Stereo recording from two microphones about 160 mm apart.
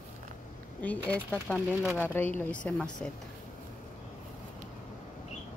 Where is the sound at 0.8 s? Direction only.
10° left (ahead or behind).